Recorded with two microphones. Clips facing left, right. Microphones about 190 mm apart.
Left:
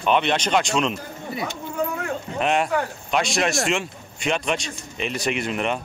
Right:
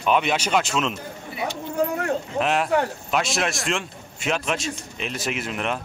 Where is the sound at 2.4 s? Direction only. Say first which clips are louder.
Even; centre (ahead or behind).